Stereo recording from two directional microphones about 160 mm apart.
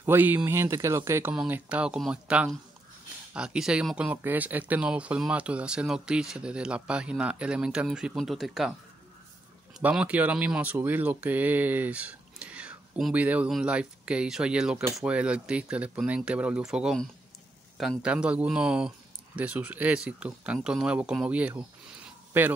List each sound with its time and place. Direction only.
0.0 s speech: 10° right (ahead or behind)
1.3 s speech: 5° right (ahead or behind)
9.8 s speech: 5° right (ahead or behind)